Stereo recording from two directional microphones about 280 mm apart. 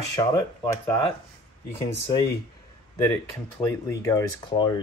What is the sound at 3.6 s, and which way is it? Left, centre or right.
Speech, centre.